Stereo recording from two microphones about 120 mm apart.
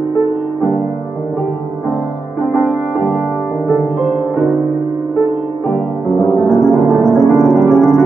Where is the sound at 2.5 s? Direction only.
5° right (ahead or behind).